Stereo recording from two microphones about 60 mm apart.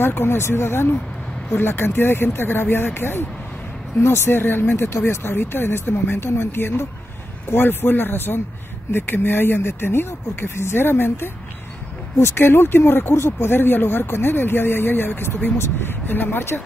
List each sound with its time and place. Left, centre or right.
0.0 s speech: left